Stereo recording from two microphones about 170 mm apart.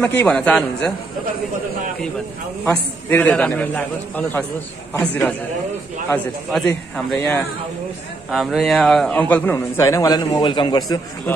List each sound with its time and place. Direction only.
0.0 s a man's voice: 10° left (ahead or behind)
2.6 s a man's voice: 10° left (ahead or behind)
8.3 s a man's voice: centre (ahead or behind); by 11.0 s 25° left (ahead or behind)
11.3 s a man's voice: 15° left (ahead or behind)